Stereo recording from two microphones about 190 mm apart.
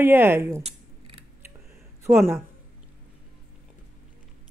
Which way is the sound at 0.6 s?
30° right (ahead or behind).